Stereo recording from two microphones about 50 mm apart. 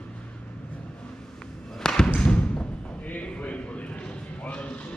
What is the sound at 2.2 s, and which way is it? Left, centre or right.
Thump, centre.